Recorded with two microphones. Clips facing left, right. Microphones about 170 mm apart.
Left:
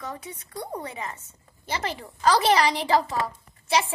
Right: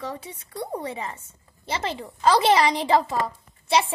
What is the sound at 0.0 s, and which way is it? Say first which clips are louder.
A woman's voice: right 2 dB; 30° right (ahead or behind).